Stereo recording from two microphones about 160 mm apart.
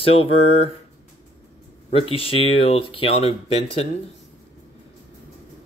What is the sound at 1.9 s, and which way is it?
Speech, 35° left (ahead or behind).